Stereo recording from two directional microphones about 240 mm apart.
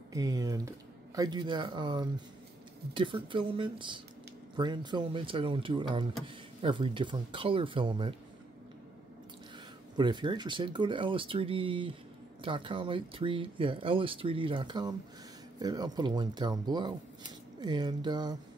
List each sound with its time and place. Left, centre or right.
0.1 s speech: centre
9.9 s speech: centre